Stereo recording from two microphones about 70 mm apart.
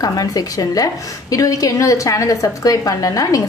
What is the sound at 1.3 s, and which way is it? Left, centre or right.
A woman's voice, left.